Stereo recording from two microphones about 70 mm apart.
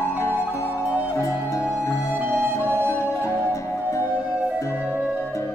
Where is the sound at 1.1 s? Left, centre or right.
Left.